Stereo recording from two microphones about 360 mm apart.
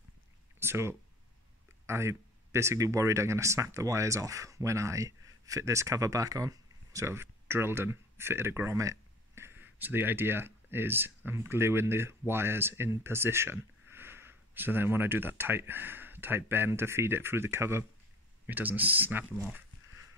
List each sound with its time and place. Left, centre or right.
0.6 s speech: centre